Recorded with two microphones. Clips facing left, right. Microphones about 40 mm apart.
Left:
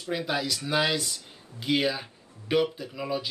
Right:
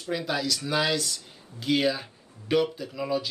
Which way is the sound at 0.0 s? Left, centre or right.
Centre.